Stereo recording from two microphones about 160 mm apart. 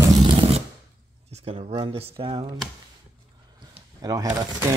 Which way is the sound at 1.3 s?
40° right (ahead or behind).